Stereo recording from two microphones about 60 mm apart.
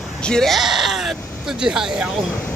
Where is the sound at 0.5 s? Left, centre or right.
Centre.